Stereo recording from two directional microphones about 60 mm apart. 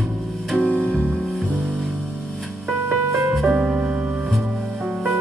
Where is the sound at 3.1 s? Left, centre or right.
Centre.